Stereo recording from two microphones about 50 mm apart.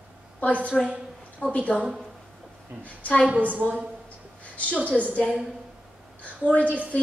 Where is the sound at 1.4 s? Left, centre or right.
Left.